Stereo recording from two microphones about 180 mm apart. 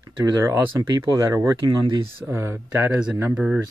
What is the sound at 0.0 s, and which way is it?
Speech, 15° right (ahead or behind).